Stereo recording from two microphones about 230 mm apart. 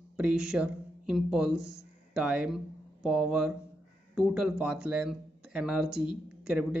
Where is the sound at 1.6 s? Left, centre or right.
Right.